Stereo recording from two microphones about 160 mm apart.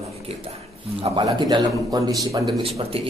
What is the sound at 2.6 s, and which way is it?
Speech, 35° right (ahead or behind).